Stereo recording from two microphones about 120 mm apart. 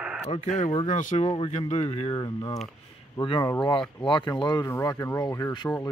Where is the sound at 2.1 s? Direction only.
30° left (ahead or behind).